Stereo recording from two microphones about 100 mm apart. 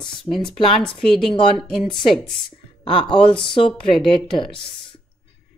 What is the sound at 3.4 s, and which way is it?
A woman's voice, 60° left (ahead or behind).